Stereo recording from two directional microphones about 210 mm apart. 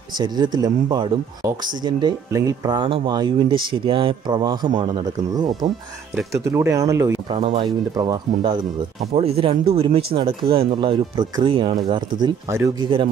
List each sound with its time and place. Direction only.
0.2 s speech: 20° right (ahead or behind)
6.1 s speech: 15° right (ahead or behind)
7.3 s speech: 30° right (ahead or behind)